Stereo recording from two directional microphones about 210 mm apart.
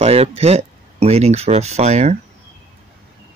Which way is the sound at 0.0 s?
30° right (ahead or behind).